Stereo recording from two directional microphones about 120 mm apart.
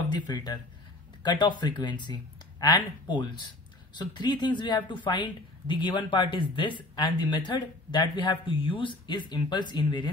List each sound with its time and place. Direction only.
0.1 s speech: 35° left (ahead or behind)